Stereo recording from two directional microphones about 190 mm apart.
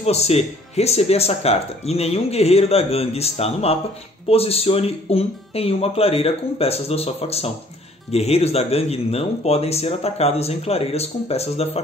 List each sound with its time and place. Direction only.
0.0 s speech: 35° left (ahead or behind)